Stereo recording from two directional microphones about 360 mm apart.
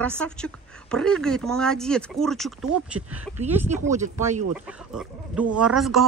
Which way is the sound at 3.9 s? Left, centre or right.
Centre.